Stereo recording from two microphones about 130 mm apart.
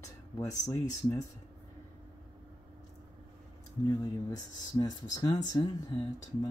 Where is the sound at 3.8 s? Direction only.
30° left (ahead or behind).